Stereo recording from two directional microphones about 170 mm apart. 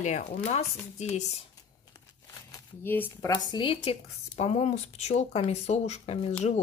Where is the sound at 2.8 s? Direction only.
10° left (ahead or behind).